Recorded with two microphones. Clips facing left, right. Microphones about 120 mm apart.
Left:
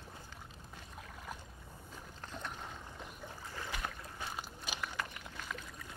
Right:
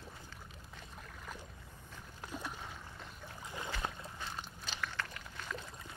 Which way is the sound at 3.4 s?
15° right (ahead or behind).